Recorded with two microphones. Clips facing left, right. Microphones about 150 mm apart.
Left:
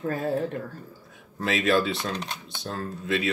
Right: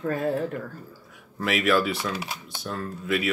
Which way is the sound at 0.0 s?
30° left (ahead or behind).